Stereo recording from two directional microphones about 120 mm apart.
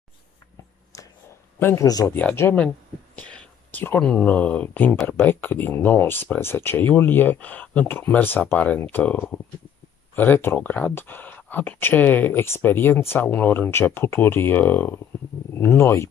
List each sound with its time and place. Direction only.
0.9 s a sound: 30° left (ahead or behind)
1.6 s speech: 20° left (ahead or behind)
1.9 s speech: 30° left (ahead or behind)
2.1 s speech: 15° left (ahead or behind)
3.2 s a sound: 10° left (ahead or behind)
4.0 s speech: 10° left (ahead or behind)